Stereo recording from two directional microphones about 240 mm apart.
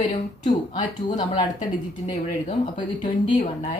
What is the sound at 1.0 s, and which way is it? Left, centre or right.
Speech, centre.